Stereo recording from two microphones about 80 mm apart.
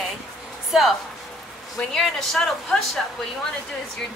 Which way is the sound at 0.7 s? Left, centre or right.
Centre.